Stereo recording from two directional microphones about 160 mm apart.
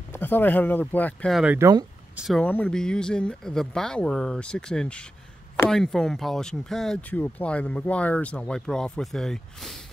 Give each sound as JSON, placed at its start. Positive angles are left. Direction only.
{"t": 0.1, "sound": "speech", "side_deg": 10}
{"t": 1.3, "sound": "speech", "side_deg": -5}
{"t": 1.6, "sound": "speech", "side_deg": -25}
{"t": 2.1, "sound": "speech", "side_deg": 0}
{"t": 2.4, "sound": "speech", "side_deg": 10}